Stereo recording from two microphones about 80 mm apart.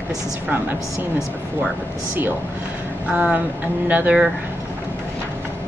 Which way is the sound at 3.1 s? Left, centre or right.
Centre.